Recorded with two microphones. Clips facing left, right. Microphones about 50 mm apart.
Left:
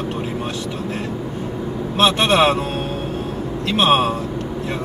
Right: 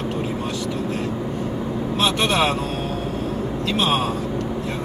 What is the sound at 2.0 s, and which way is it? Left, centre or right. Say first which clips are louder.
Speech: left 5 dB; left.